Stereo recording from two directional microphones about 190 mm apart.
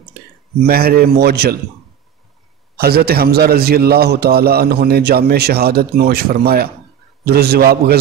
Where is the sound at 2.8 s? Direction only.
55° right (ahead or behind).